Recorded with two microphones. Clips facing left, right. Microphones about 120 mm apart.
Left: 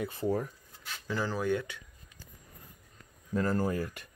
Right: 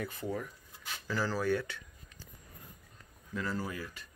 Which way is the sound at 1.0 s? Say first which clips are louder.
Left 1 dB; 20° left (ahead or behind).